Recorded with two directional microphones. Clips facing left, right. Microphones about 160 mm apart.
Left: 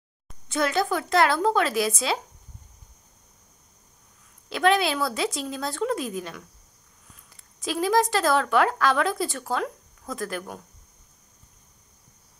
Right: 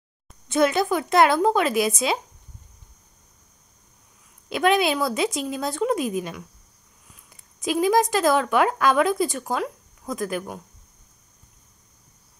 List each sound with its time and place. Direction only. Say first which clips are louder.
0.5 s a woman's voice: right 4 dB; 20° right (ahead or behind)
4.5 s speech: right 2 dB; 20° right (ahead or behind)
7.6 s speech: right 3 dB; 15° right (ahead or behind)